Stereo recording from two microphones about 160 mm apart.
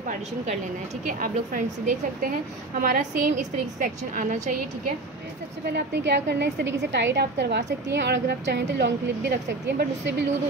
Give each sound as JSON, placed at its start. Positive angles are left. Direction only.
{"t": 1.0, "sound": "a woman's voice", "side_deg": -55}
{"t": 5.7, "sound": "a woman's voice", "side_deg": -90}